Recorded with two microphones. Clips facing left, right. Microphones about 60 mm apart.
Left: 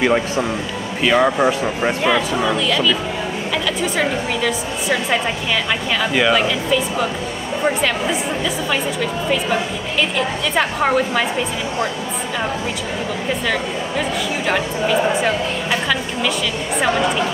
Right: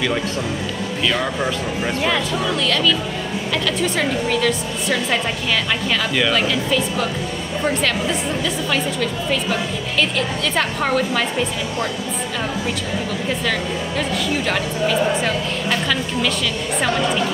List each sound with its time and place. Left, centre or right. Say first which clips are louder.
0.0 s speech: left 5 dB; left
2.0 s a woman's voice: left 4 dB; centre
14.5 s a woman's voice: left 5 dB; centre